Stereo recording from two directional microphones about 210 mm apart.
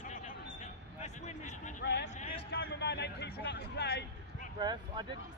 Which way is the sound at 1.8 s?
50° left (ahead or behind).